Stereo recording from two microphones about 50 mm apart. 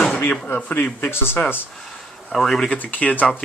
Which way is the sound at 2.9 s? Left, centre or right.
Left.